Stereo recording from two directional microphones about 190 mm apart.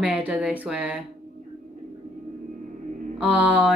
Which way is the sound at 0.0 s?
5° right (ahead or behind).